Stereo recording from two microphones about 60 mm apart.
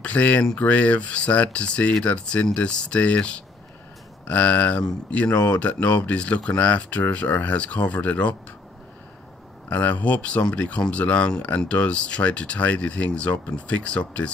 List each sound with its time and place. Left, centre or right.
0.0 s speech: left
9.7 s speech: left